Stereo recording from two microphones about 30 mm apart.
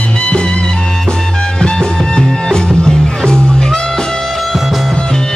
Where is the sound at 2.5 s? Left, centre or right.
Centre.